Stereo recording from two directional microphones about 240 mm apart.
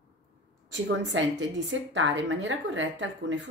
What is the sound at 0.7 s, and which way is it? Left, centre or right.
A woman's voice, right.